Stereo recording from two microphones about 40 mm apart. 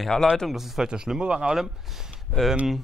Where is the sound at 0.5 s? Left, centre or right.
Centre.